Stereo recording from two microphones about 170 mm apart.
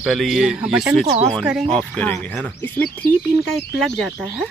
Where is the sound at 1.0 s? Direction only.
35° right (ahead or behind).